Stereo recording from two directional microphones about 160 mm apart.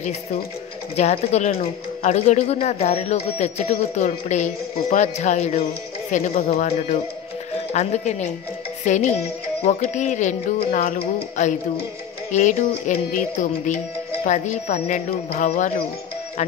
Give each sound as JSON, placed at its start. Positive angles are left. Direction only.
{"t": 0.9, "sound": "speech", "side_deg": 45}
{"t": 15.0, "sound": "speech", "side_deg": 65}